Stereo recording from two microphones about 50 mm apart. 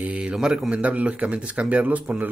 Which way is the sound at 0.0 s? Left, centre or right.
Right.